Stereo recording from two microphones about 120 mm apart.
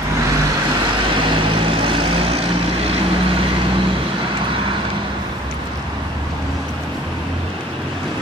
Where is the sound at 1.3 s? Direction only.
45° right (ahead or behind).